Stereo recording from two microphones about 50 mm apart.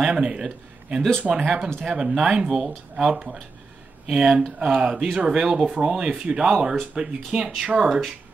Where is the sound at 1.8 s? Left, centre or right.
Centre.